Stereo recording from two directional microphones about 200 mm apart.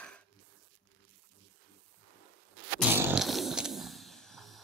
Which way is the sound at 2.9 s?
10° right (ahead or behind).